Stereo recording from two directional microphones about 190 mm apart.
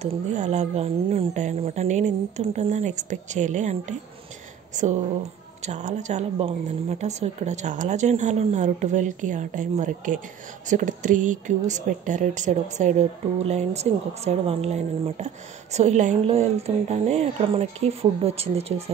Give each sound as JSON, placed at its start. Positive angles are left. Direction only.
{"t": 0.0, "sound": "a woman's voice", "side_deg": -35}